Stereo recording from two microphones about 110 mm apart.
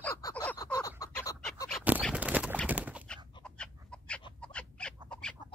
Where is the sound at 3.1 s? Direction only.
10° left (ahead or behind).